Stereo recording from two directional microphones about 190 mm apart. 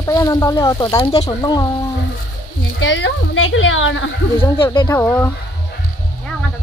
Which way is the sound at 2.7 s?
70° left (ahead or behind).